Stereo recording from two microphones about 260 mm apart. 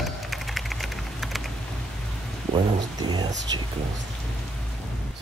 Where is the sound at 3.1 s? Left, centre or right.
Centre.